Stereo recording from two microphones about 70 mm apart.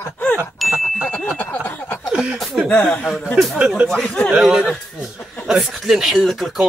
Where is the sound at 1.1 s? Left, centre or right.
Left.